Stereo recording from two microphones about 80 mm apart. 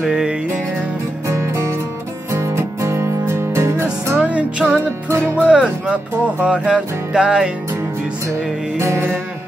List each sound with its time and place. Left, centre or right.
0.1 s music: centre
1.2 s music: right
4.2 s music: centre
8.7 s music: right